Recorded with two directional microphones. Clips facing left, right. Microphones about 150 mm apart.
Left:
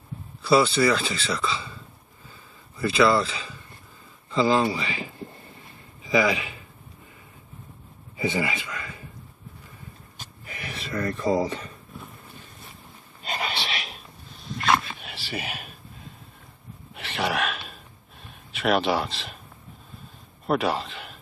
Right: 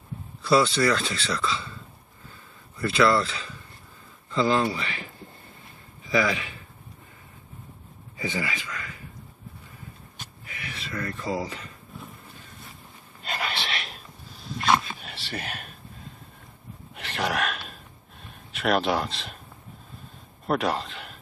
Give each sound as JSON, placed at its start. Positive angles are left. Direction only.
{"t": 0.4, "sound": "speech", "side_deg": 5}
{"t": 2.8, "sound": "a man's voice", "side_deg": 5}
{"t": 8.2, "sound": "a man's voice", "side_deg": 20}
{"t": 10.5, "sound": "speech", "side_deg": 35}
{"t": 13.5, "sound": "dog", "side_deg": 0}
{"t": 16.9, "sound": "gasp", "side_deg": 0}
{"t": 18.2, "sound": "speech", "side_deg": 0}
{"t": 20.4, "sound": "a man's voice", "side_deg": 0}